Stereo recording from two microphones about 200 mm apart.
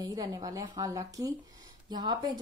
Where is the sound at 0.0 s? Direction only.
20° right (ahead or behind).